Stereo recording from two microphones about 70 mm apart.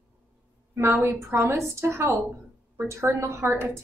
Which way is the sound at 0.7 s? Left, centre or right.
Right.